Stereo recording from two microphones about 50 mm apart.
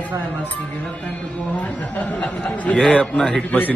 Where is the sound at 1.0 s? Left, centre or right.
Left.